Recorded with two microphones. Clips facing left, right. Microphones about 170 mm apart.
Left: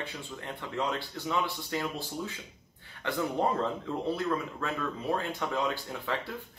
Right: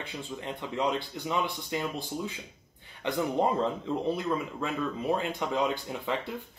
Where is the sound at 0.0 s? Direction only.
15° right (ahead or behind).